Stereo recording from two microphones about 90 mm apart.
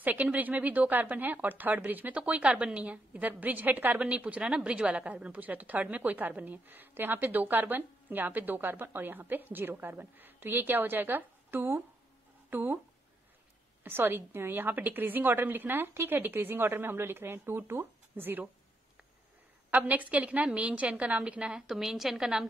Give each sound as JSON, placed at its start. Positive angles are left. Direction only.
{"t": 0.0, "sound": "speech", "side_deg": -20}
{"t": 13.8, "sound": "speech", "side_deg": -25}
{"t": 19.7, "sound": "a woman's voice", "side_deg": -20}